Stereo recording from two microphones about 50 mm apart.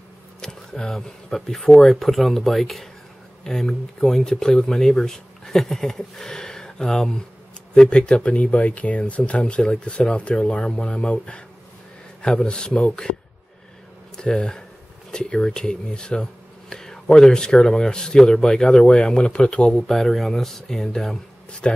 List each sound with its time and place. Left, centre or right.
0.4 s speech: centre
14.1 s speech: centre
19.9 s speech: centre
21.5 s speech: left